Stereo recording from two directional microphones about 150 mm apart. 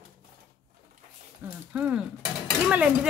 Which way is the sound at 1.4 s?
10° right (ahead or behind).